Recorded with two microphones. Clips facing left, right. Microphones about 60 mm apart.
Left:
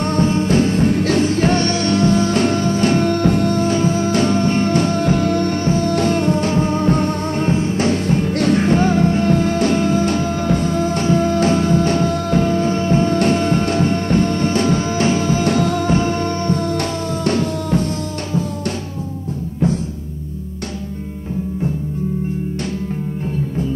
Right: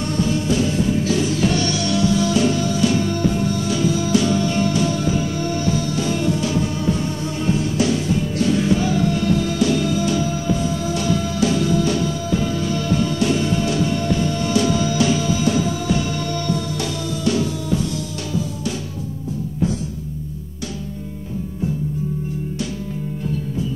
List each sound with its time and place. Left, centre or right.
0.0 s music: left
15.9 s music: left